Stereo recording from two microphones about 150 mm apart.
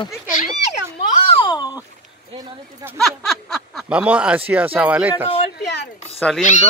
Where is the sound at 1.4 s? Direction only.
30° left (ahead or behind).